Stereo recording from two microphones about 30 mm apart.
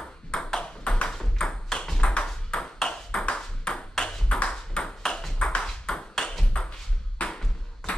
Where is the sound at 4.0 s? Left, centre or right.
Centre.